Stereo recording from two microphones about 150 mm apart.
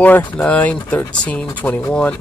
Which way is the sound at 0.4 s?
10° left (ahead or behind).